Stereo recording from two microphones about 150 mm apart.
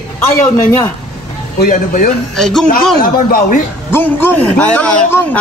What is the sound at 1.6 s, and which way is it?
Speech, 65° left (ahead or behind).